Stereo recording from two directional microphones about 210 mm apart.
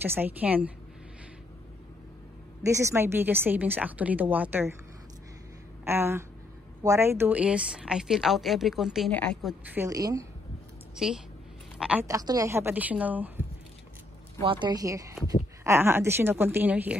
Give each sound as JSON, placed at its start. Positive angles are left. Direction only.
{"t": 0.0, "sound": "a woman's voice", "side_deg": -10}
{"t": 2.6, "sound": "a woman's voice", "side_deg": -15}
{"t": 5.9, "sound": "a woman's voice", "side_deg": -10}
{"t": 11.0, "sound": "a woman's voice", "side_deg": -5}
{"t": 14.4, "sound": "a woman's voice", "side_deg": -20}